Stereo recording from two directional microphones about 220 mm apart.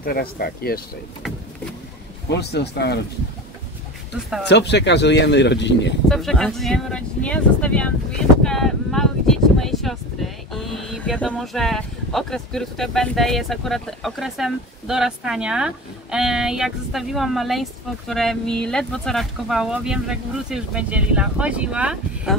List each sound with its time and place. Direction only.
0.0 s speech: 40° left (ahead or behind)
2.2 s speech: 50° left (ahead or behind)
4.5 s speech: 50° left (ahead or behind)
6.0 s speech: centre (ahead or behind)